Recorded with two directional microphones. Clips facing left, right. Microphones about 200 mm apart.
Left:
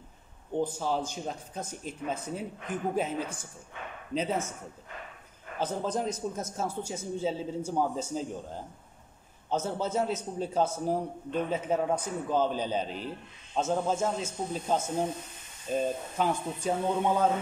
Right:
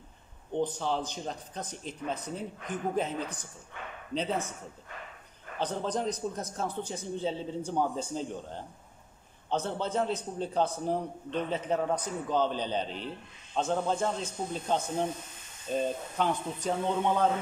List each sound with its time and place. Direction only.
0.5 s a man's voice: 5° left (ahead or behind)
5.6 s a man's voice: 5° left (ahead or behind)